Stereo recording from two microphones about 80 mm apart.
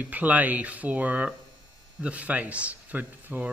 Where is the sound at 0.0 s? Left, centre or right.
Right.